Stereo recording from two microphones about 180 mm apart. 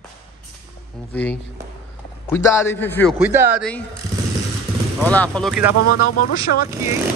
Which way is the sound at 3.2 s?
10° right (ahead or behind).